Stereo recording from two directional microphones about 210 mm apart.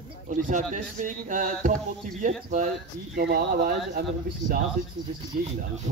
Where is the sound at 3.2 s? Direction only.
50° right (ahead or behind).